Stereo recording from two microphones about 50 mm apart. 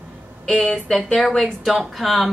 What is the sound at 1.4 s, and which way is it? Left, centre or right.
Speech, centre.